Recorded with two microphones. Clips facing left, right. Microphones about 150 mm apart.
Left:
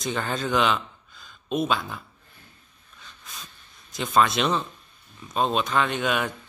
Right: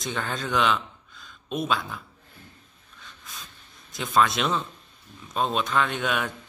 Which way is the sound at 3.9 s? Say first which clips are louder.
Left 1 dB; centre (ahead or behind).